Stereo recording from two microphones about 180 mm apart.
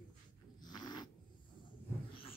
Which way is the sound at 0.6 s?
25° left (ahead or behind).